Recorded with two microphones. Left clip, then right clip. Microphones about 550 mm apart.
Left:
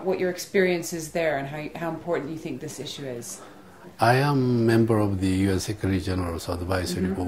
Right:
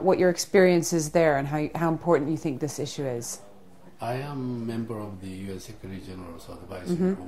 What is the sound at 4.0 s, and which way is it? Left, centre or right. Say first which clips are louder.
Speech: left 11 dB; left.